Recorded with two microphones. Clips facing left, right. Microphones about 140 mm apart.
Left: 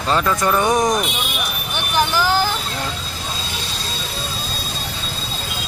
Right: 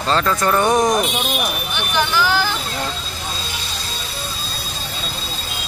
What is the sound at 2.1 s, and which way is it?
Speech, 40° left (ahead or behind).